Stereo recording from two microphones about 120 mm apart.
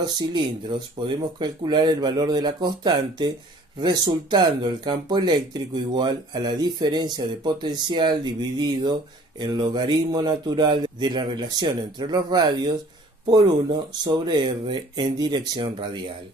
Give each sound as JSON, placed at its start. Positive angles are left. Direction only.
{"t": 0.0, "sound": "speech", "side_deg": -40}